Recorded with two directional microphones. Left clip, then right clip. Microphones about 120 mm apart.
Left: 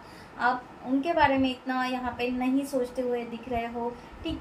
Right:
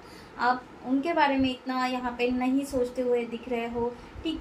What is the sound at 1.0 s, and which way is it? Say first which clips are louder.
A woman's voice: left 1 dB; 10° right (ahead or behind).